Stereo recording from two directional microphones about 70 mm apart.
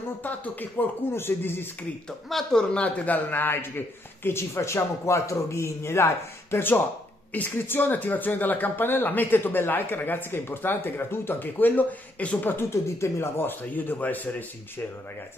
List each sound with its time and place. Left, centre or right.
0.2 s a man's voice: left
2.0 s speech: centre
2.7 s a man's voice: centre